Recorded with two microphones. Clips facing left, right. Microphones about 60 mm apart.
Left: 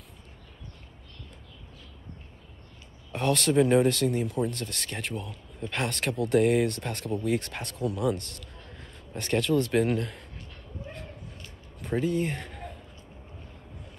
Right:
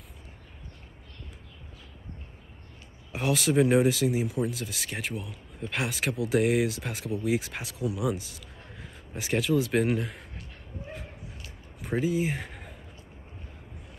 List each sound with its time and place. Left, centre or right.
3.1 s speech: centre
11.8 s speech: centre